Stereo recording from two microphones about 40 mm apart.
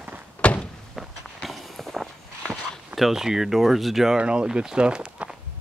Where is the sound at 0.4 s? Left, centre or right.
Left.